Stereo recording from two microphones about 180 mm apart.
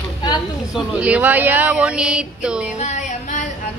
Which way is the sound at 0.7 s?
10° right (ahead or behind).